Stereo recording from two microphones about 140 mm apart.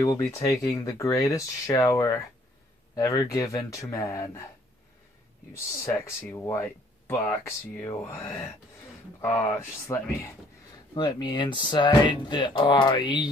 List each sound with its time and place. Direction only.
0.0 s speech: 20° left (ahead or behind)
5.8 s speech: 20° left (ahead or behind)
11.0 s speech: 30° left (ahead or behind)